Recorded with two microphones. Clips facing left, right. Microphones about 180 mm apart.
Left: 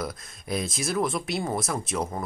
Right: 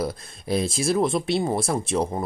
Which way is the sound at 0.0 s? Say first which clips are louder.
Right 5 dB; 30° right (ahead or behind).